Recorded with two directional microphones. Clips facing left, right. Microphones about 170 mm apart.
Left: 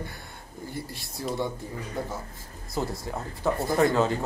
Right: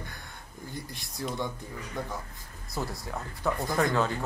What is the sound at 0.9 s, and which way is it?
Speech, 20° right (ahead or behind).